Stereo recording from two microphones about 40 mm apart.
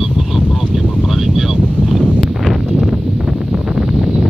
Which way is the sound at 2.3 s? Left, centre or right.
Centre.